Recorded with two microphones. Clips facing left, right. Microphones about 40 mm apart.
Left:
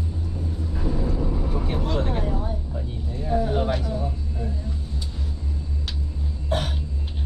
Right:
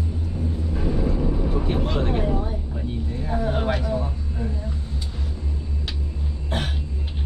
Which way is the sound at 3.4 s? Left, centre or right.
Right.